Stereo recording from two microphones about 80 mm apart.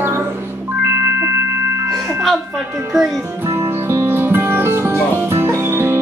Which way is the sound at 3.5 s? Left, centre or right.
Right.